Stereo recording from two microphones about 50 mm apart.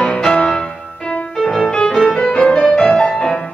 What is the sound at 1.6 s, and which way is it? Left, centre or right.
Music, centre.